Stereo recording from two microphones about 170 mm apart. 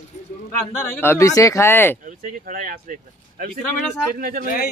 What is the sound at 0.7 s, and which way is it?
Speech, 15° left (ahead or behind).